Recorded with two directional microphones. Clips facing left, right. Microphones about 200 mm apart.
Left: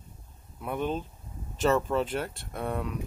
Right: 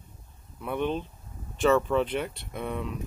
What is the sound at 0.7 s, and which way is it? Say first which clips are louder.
Speech: right 2 dB; 40° left (ahead or behind).